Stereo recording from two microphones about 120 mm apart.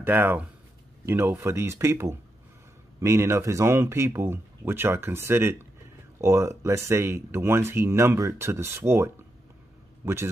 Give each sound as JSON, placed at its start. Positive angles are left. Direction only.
{"t": 0.0, "sound": "speech", "side_deg": -15}